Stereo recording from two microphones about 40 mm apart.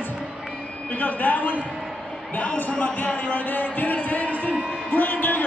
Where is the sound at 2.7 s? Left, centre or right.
Left.